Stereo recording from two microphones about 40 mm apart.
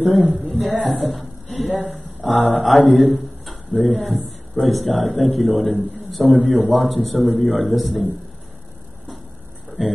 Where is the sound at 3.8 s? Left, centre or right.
Centre.